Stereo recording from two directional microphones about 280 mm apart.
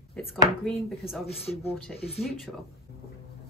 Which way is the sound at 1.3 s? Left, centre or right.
Left.